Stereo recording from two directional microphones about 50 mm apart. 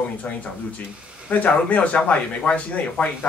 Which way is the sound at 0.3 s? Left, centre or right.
Left.